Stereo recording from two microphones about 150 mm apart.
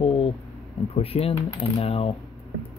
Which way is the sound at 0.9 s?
40° left (ahead or behind).